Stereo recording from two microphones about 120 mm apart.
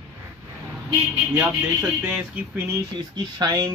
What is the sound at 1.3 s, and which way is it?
Speech, 15° right (ahead or behind).